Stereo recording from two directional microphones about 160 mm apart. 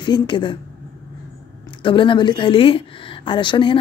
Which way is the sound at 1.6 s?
30° left (ahead or behind).